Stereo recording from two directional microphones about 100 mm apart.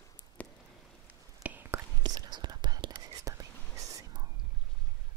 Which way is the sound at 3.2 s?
35° right (ahead or behind).